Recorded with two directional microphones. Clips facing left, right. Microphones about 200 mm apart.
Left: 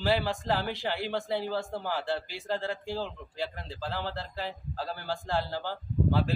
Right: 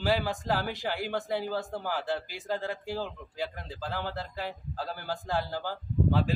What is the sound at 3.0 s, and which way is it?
Speech, 15° right (ahead or behind).